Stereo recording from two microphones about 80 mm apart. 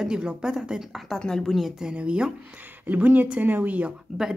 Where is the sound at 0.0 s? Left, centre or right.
Centre.